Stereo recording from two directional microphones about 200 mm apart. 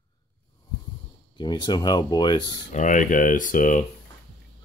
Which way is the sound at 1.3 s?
20° left (ahead or behind).